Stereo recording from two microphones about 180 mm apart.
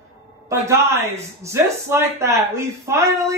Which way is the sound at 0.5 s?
15° right (ahead or behind).